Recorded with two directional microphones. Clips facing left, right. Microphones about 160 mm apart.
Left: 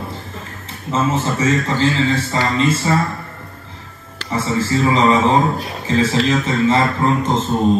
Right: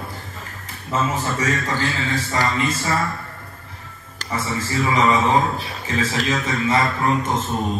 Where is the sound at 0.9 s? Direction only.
25° left (ahead or behind).